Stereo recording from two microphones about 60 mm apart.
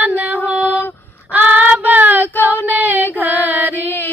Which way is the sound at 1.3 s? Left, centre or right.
Right.